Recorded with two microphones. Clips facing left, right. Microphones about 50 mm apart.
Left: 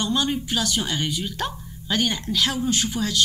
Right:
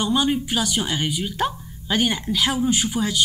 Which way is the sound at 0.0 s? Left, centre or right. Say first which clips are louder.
Right 3 dB; centre.